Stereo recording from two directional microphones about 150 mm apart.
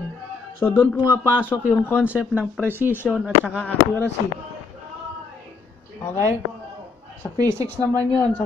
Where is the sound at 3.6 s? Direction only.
15° left (ahead or behind).